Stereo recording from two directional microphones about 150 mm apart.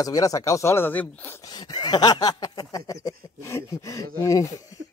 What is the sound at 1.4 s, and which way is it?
Speech, 30° left (ahead or behind).